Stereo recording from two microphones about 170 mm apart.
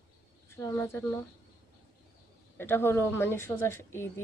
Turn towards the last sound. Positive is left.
turn(degrees=15)  # may be behind; listen again after turning